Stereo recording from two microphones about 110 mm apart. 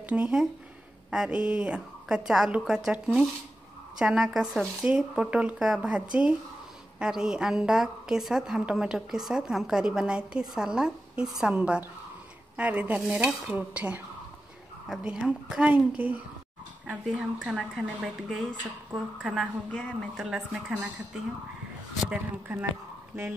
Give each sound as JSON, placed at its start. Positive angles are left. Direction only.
{"t": 0.1, "sound": "a woman's voice", "side_deg": -10}
{"t": 15.0, "sound": "a woman's voice", "side_deg": -5}
{"t": 19.7, "sound": "speech", "side_deg": 10}
{"t": 20.2, "sound": "a woman's voice", "side_deg": -5}
{"t": 22.1, "sound": "speech", "side_deg": -15}